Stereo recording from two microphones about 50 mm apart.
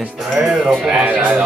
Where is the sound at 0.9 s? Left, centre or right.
Right.